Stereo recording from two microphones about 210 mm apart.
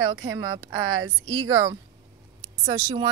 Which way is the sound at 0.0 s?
20° right (ahead or behind).